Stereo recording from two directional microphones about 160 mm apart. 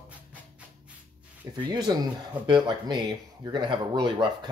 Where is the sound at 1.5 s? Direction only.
25° right (ahead or behind).